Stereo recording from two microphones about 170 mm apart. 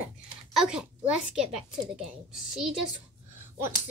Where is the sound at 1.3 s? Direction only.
5° right (ahead or behind).